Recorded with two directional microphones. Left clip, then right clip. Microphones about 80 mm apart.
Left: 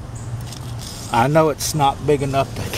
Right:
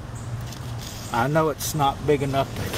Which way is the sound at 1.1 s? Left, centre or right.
Left.